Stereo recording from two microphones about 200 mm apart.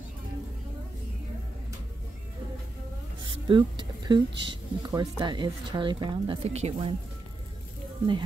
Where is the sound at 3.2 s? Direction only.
25° right (ahead or behind).